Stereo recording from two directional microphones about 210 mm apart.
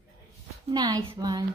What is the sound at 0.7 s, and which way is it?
Speech, 20° right (ahead or behind).